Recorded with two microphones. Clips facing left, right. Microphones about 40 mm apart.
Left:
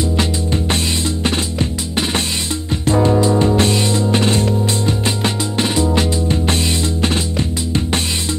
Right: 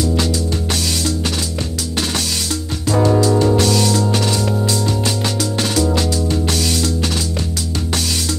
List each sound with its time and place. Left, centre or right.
0.0 s music: left